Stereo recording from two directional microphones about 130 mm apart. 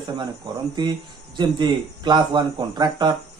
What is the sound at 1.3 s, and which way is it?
A man's voice, 35° right (ahead or behind).